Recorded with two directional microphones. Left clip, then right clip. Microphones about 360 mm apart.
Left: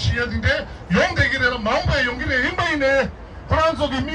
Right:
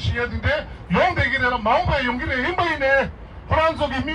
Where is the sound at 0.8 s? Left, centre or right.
Centre.